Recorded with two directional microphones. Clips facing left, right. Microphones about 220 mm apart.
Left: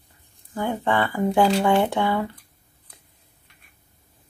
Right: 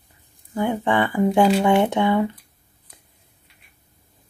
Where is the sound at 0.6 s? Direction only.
15° right (ahead or behind).